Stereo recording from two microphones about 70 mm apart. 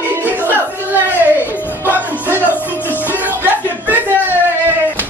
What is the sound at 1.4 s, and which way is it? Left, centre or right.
Music, left.